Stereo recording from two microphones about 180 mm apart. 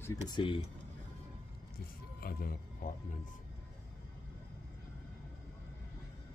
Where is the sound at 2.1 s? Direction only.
55° left (ahead or behind).